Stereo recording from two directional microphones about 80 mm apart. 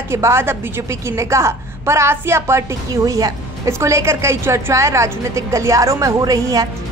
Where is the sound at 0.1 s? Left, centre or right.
Right.